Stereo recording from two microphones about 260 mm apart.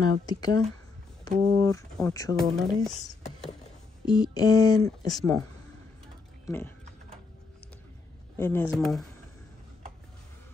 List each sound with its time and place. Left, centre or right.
0.3 s speech: centre
2.3 s speech: centre
4.0 s speech: centre
6.4 s a sound: centre
8.4 s speech: centre